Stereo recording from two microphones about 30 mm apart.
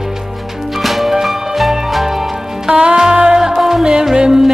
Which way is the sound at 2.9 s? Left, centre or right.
Centre.